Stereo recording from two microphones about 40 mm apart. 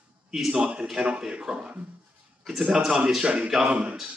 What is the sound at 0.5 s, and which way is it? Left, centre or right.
Speech, right.